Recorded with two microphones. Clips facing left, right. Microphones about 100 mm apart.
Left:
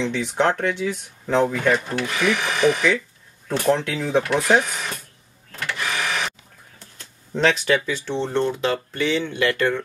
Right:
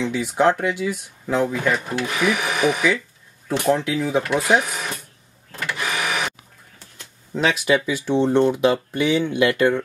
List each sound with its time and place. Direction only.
0.0 s speech: 10° right (ahead or behind)
5.7 s printer: 10° right (ahead or behind)
7.3 s speech: 10° right (ahead or behind)